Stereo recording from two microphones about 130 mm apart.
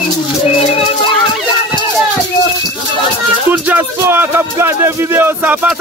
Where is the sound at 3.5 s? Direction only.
15° right (ahead or behind).